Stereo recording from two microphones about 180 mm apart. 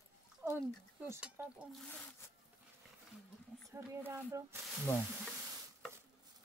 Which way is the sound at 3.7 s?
15° right (ahead or behind).